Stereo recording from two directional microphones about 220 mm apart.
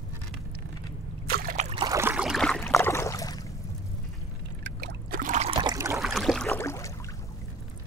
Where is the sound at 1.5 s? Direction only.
30° right (ahead or behind).